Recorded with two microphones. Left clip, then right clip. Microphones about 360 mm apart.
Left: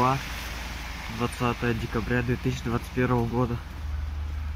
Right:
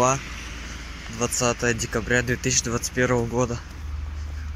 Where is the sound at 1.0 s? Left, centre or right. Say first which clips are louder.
Right 5 dB; centre.